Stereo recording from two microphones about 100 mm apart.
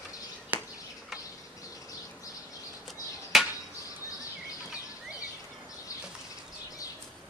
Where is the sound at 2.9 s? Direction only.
Centre (ahead or behind).